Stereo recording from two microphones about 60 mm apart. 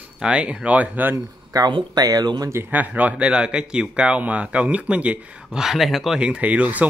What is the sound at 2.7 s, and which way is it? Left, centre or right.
Speech, right.